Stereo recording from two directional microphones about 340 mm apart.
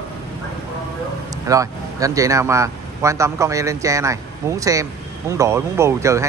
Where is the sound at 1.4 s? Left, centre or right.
Centre.